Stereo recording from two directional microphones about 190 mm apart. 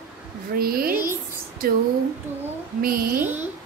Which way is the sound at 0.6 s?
50° right (ahead or behind).